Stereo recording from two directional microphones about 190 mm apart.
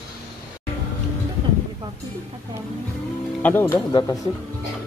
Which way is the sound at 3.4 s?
10° left (ahead or behind).